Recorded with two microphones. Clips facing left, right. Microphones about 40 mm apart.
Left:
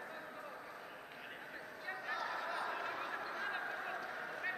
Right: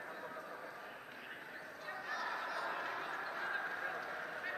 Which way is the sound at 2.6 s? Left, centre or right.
Centre.